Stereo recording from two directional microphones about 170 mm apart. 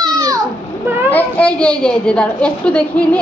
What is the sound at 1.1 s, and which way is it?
A woman's voice, 5° left (ahead or behind).